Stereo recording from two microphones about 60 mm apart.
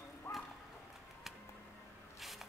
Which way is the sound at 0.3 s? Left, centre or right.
Left.